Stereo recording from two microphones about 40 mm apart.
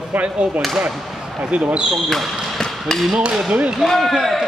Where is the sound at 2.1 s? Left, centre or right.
Centre.